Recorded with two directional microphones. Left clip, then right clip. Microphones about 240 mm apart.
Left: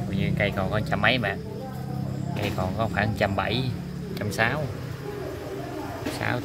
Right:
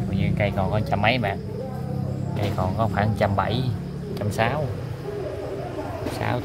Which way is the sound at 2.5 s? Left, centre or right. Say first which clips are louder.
Right 3 dB; centre.